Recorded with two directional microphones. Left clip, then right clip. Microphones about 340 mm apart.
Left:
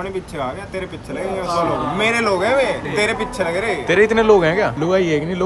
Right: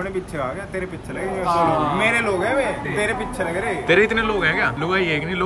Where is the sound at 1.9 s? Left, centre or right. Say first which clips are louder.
Left 2 dB; centre.